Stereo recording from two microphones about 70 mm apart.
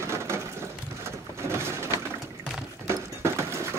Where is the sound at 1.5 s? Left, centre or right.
Right.